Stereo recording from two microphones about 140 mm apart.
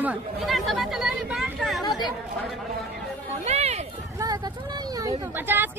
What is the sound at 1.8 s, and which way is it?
Speech, 30° left (ahead or behind).